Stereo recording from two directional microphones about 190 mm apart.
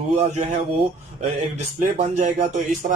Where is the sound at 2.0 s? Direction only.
45° right (ahead or behind).